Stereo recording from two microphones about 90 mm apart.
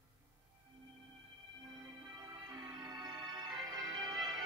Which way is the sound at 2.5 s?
45° right (ahead or behind).